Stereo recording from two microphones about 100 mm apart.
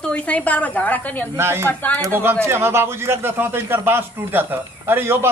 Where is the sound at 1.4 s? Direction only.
25° right (ahead or behind).